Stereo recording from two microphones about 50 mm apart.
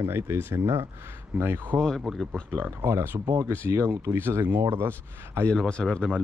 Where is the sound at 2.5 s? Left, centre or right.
Right.